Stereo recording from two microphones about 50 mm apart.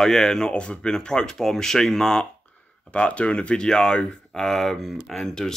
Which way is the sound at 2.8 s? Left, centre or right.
Left.